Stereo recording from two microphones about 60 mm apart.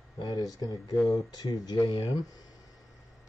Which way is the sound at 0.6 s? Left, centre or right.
Left.